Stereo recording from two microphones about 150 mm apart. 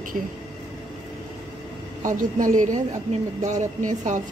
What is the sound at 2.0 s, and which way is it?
A woman's voice, 60° right (ahead or behind).